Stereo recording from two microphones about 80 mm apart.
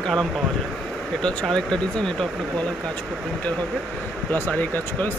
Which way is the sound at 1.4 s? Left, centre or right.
Centre.